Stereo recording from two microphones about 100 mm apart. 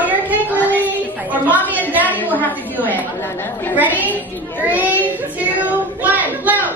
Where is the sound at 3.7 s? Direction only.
15° right (ahead or behind).